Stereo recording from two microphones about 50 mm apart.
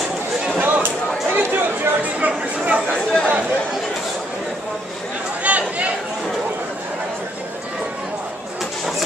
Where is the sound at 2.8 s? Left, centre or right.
Centre.